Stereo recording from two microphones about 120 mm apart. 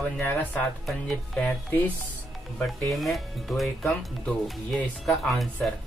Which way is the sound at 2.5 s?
Centre (ahead or behind).